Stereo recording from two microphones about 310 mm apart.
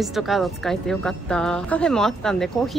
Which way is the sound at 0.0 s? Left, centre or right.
Centre.